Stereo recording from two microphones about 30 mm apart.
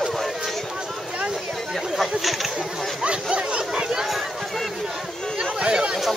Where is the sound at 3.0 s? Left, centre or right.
Right.